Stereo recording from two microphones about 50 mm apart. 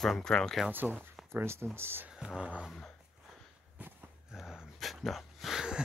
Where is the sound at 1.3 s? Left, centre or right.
Right.